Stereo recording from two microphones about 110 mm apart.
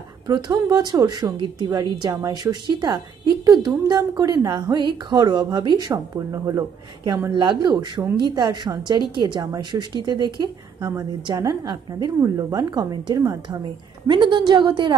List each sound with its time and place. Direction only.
0.3 s a woman's voice: 40° right (ahead or behind)
1.7 s a woman's voice: 35° right (ahead or behind)
10.8 s a woman's voice: 25° right (ahead or behind)
14.0 s speech: 45° right (ahead or behind)